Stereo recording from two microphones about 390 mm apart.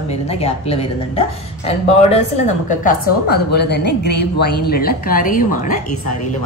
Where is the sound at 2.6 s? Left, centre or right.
Left.